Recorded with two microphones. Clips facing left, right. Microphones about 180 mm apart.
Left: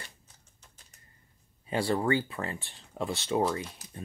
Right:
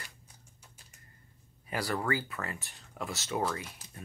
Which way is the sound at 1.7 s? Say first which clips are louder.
Left 5 dB; 25° left (ahead or behind).